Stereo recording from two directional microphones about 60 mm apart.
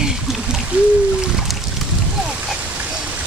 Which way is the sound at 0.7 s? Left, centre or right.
Right.